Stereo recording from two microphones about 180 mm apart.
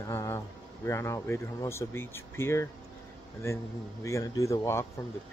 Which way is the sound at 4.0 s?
15° left (ahead or behind).